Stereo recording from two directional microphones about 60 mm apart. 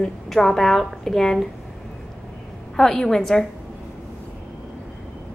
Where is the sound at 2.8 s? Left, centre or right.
Centre.